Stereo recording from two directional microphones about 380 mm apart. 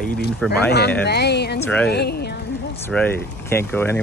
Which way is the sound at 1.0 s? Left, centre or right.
Left.